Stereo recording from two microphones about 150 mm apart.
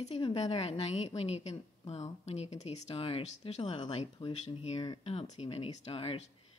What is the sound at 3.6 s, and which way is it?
A woman's voice, 30° left (ahead or behind).